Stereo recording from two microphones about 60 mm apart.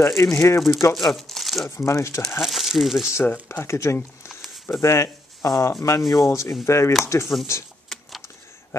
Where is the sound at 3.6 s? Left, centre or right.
Left.